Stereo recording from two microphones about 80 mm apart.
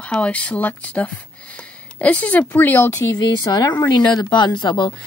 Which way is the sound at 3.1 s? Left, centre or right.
Left.